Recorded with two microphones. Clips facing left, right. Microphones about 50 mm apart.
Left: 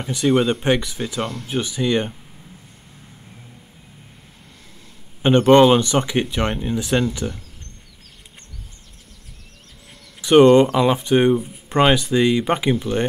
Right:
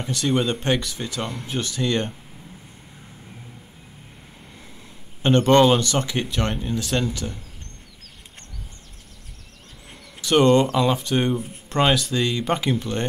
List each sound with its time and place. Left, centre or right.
0.0 s speech: centre
1.2 s speech: centre
1.5 s speech: centre
5.2 s speech: centre
10.2 s speech: centre